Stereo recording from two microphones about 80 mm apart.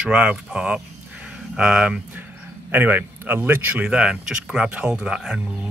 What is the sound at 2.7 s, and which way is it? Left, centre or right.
Speech, right.